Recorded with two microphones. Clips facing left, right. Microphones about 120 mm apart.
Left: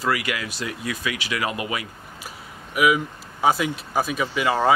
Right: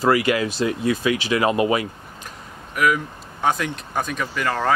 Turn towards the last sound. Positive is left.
turn(degrees=10)  # may be behind; listen again after turning